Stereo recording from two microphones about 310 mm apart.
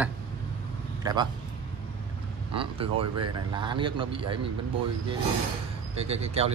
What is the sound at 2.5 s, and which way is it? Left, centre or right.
Speech, centre.